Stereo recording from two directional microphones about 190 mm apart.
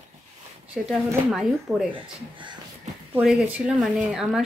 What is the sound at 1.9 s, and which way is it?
Speech, 25° right (ahead or behind).